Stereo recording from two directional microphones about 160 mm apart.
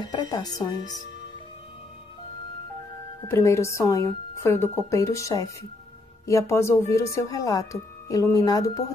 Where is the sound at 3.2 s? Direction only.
20° left (ahead or behind).